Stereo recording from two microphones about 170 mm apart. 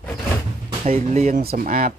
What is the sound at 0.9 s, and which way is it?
Speech, 40° right (ahead or behind).